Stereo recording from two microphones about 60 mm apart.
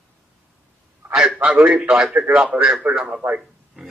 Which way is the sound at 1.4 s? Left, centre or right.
Right.